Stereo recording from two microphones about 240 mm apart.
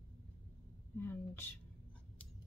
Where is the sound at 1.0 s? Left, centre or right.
Centre.